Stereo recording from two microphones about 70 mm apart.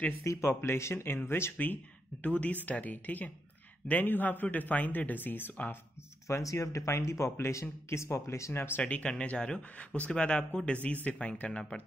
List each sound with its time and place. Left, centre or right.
0.2 s speech: left
2.2 s speech: left
6.2 s speech: left
8.8 s speech: centre